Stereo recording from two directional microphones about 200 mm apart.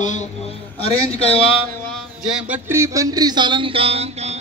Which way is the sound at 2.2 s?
5° right (ahead or behind).